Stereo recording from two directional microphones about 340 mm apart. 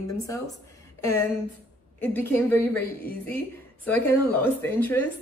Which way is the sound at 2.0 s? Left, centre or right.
Centre.